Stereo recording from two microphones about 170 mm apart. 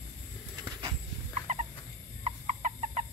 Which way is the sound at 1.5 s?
45° right (ahead or behind).